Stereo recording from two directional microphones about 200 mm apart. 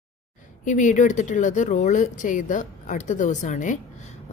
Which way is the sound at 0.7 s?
40° left (ahead or behind).